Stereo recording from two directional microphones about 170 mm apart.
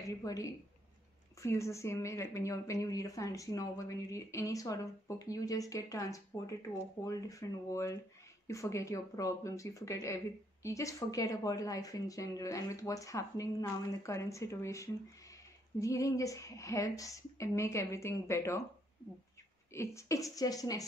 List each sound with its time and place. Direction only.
0.0 s speech: 20° left (ahead or behind)
19.7 s speech: 15° left (ahead or behind)